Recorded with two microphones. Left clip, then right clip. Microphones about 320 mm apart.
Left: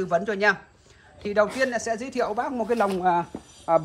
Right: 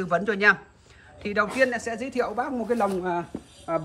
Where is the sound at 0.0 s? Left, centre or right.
Centre.